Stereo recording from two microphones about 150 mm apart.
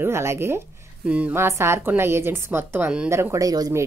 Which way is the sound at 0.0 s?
15° right (ahead or behind).